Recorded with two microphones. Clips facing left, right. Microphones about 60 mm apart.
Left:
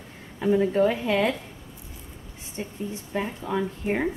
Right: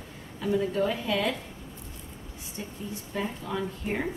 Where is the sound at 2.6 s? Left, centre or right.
Left.